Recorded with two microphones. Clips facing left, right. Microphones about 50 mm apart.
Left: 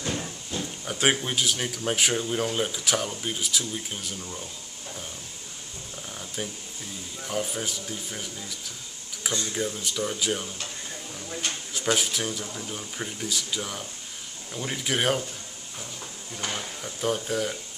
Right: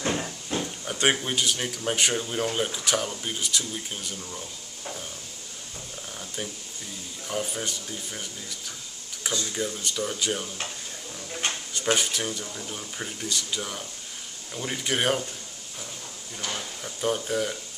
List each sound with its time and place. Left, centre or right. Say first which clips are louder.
0.5 s a sound: right 3 dB; right
0.8 s speech: even; centre
6.1 s a sound: left 1 dB; centre
7.2 s speech: even; centre
11.7 s speech: even; centre
16.8 s speech: right 1 dB; centre